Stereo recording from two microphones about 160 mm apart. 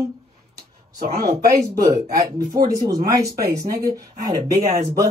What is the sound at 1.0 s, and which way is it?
Speech, 70° right (ahead or behind).